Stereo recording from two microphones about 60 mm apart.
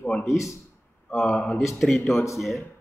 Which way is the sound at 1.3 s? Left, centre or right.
Centre.